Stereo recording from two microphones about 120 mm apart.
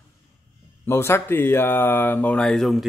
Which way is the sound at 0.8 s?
20° left (ahead or behind).